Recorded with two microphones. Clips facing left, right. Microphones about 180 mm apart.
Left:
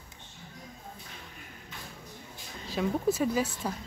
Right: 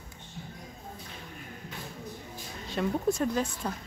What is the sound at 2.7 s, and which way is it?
Speech, centre (ahead or behind).